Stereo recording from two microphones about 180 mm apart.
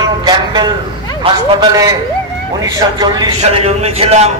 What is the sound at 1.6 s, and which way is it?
A man's voice, 20° right (ahead or behind).